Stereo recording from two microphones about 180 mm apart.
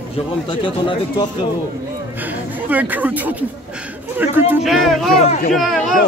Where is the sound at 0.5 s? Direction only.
25° left (ahead or behind).